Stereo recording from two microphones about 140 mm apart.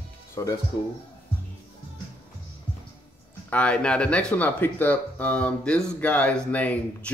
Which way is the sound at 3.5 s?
10° left (ahead or behind).